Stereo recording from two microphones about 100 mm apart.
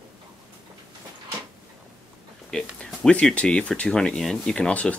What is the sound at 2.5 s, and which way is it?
Speech, 10° left (ahead or behind).